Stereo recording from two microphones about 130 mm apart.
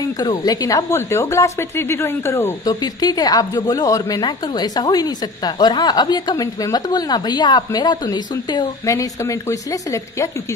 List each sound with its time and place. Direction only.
0.5 s speech: 30° left (ahead or behind)
2.7 s speech: 30° left (ahead or behind)